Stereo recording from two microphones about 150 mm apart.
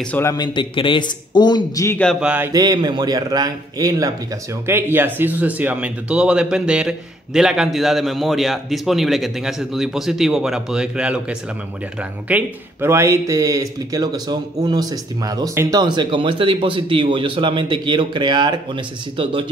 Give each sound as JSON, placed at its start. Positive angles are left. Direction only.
{"t": 0.2, "sound": "speech", "side_deg": 20}
{"t": 0.5, "sound": "a man's voice", "side_deg": 35}
{"t": 2.1, "sound": "mantra", "side_deg": -10}
{"t": 2.5, "sound": "a man's voice", "side_deg": -25}
{"t": 4.6, "sound": "a man's voice", "side_deg": -15}